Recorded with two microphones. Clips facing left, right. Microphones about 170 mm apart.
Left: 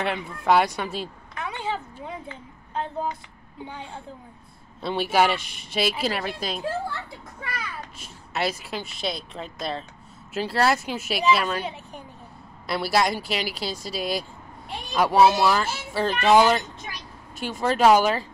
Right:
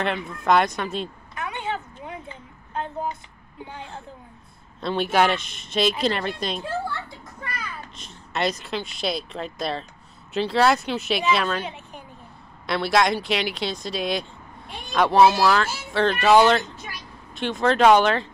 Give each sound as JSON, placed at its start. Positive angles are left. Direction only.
{"t": 0.0, "sound": "speech", "side_deg": 10}
{"t": 1.4, "sound": "vehicle", "side_deg": 30}
{"t": 4.7, "sound": "speech", "side_deg": 10}
{"t": 8.0, "sound": "speech", "side_deg": 5}
{"t": 12.6, "sound": "speech", "side_deg": 5}